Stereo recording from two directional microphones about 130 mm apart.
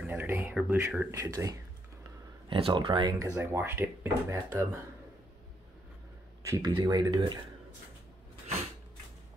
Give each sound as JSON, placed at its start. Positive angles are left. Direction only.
{"t": 0.0, "sound": "speech", "side_deg": -15}
{"t": 2.5, "sound": "speech", "side_deg": -40}
{"t": 6.4, "sound": "speech", "side_deg": -25}